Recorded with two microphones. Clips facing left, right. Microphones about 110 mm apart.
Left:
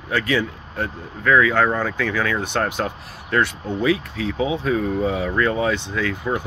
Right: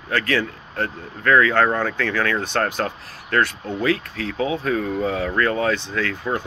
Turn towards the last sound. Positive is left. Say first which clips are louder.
# left 1 dB
turn(degrees=15)  # may be behind; listen again after turning